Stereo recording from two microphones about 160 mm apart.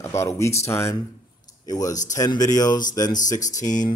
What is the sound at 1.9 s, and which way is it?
Speech, 50° left (ahead or behind).